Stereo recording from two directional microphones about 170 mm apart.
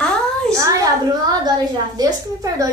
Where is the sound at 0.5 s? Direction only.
25° right (ahead or behind).